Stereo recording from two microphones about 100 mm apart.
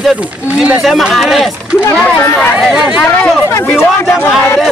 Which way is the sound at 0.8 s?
Centre (ahead or behind).